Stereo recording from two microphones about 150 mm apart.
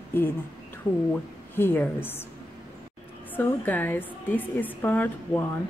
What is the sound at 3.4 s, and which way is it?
A woman's voice, 15° left (ahead or behind).